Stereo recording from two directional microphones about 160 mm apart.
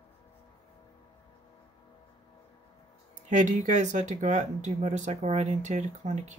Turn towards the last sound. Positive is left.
turn(degrees=-45)  # may be behind; listen again after turning